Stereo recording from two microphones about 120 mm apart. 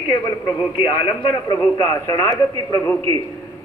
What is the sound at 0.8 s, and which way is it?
A man's voice, 40° left (ahead or behind).